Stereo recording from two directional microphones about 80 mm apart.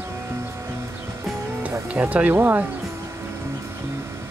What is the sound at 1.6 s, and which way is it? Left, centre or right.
Speech, right.